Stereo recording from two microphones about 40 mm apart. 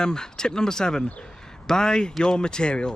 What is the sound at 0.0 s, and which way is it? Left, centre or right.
Speech, centre.